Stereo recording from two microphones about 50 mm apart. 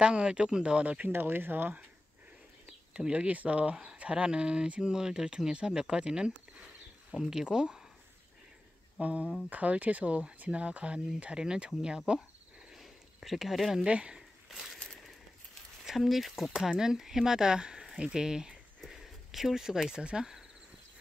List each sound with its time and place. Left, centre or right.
0.0 s speech: right
1.1 s speech: right
2.9 s speech: right
9.0 s speech: right
12.7 s a sound: centre
13.8 s speech: right
15.8 s speech: centre